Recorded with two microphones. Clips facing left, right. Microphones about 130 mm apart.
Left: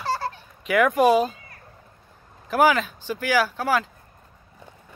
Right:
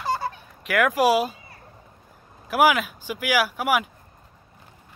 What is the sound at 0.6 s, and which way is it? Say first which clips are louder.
Speech: left 2 dB; centre (ahead or behind).